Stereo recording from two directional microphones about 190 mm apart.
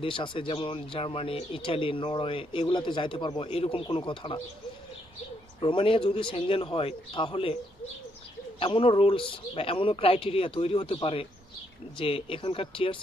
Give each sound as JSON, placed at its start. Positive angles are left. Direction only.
{"t": 0.0, "sound": "speech", "side_deg": 25}
{"t": 5.6, "sound": "speech", "side_deg": 25}
{"t": 8.5, "sound": "speech", "side_deg": 25}